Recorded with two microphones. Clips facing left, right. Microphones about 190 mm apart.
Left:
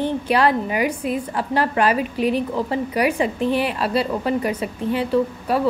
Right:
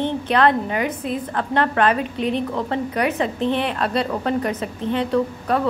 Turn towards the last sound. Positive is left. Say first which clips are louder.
# even
turn(degrees=5)  # may be behind; listen again after turning